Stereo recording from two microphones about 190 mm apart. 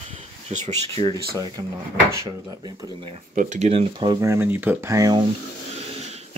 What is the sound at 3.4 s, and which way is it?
Speech, 40° right (ahead or behind).